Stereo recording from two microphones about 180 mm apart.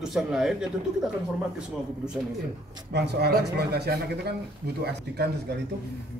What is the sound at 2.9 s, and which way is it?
Speech, 65° right (ahead or behind).